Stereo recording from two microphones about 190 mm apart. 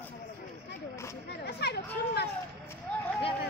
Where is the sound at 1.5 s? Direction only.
60° left (ahead or behind).